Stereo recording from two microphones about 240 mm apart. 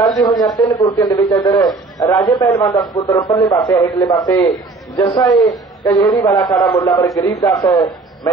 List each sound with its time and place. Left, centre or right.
0.2 s a man's voice: centre